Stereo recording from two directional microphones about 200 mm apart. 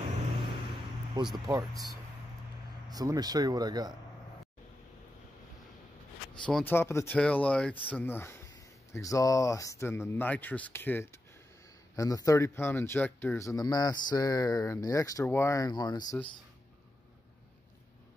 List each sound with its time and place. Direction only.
1.3 s speech: 20° right (ahead or behind)
6.4 s speech: 10° left (ahead or behind)